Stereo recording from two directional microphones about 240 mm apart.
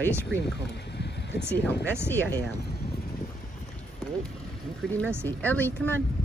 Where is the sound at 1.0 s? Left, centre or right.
Left.